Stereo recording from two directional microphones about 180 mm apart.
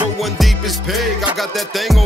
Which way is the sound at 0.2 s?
Centre (ahead or behind).